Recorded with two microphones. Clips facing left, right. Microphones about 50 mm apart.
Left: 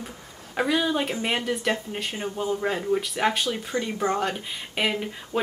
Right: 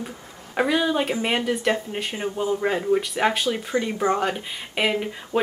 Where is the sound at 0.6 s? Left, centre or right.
Centre.